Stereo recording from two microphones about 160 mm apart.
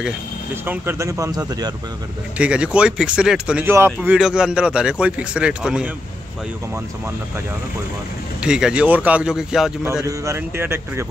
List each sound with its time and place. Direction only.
0.7 s speech: 15° right (ahead or behind)
2.3 s speech: 5° right (ahead or behind)
8.4 s speech: 5° right (ahead or behind)
10.0 s speech: 15° right (ahead or behind)